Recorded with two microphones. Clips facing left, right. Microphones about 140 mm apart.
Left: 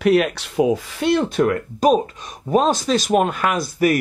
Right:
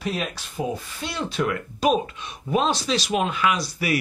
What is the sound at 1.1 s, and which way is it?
Speech, 50° left (ahead or behind).